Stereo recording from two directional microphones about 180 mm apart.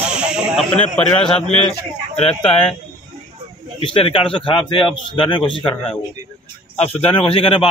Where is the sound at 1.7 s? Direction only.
35° left (ahead or behind).